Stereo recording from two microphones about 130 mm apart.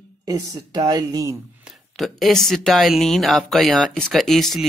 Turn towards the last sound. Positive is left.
turn(degrees=0)  # may be behind; listen again after turning